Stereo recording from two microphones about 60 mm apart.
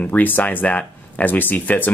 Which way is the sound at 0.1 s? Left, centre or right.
Left.